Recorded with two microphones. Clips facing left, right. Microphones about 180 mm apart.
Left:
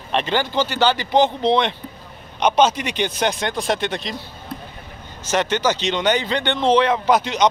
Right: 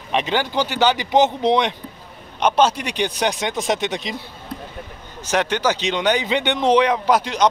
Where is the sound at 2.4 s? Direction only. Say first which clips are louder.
Left 1 dB; 5° right (ahead or behind).